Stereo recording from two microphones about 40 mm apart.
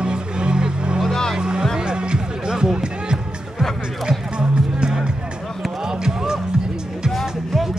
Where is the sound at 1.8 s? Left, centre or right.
Right.